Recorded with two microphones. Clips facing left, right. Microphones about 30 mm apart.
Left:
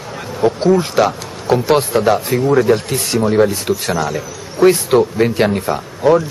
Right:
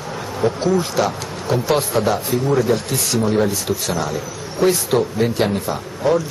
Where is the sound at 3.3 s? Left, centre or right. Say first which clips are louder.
Left 5 dB; left.